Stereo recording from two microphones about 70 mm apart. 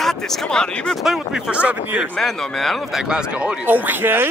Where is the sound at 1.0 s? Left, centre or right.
Centre.